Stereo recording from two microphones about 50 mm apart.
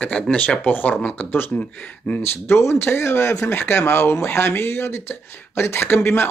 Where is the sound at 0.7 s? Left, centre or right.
Left.